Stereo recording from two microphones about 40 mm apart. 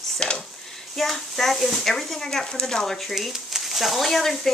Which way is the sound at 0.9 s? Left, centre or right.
Centre.